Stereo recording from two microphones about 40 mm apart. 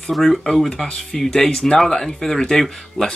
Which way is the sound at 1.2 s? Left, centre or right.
Centre.